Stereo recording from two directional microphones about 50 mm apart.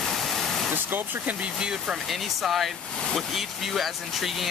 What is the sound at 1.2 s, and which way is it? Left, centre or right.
Speech, centre.